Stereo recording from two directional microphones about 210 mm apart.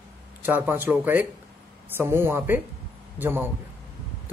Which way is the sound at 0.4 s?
10° right (ahead or behind).